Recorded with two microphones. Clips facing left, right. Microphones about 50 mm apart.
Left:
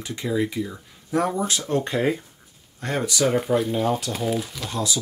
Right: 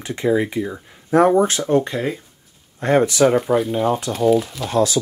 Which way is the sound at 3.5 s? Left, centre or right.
Centre.